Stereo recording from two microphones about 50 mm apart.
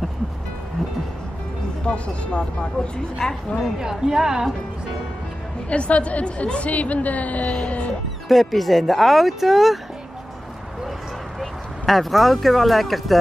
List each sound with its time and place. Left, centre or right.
1.9 s a woman's voice: left
3.5 s a woman's voice: centre
5.7 s a woman's voice: left
8.3 s speech: centre
11.3 s speech: centre